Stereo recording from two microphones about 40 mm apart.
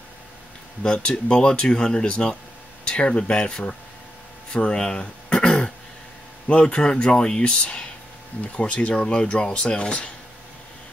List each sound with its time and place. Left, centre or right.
0.8 s speech: left
4.5 s throat clearing: left
6.6 s speech: left